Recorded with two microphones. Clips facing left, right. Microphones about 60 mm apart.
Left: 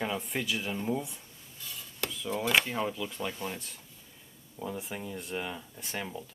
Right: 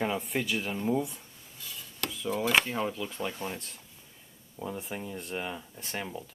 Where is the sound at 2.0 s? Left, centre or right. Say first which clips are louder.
Right 2 dB; centre.